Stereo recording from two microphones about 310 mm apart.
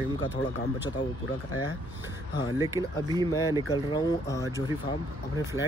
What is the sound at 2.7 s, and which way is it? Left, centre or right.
Speech, centre.